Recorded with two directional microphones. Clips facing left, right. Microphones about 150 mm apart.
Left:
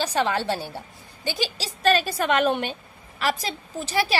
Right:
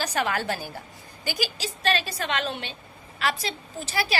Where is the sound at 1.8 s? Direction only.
45° left (ahead or behind).